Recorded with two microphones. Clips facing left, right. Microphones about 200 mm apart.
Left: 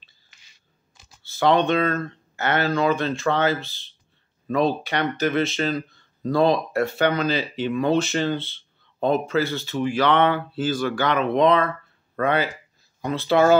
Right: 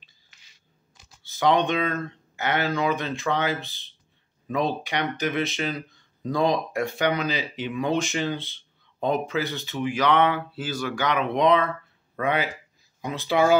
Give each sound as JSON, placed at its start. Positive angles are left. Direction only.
{"t": 1.2, "sound": "speech", "side_deg": -15}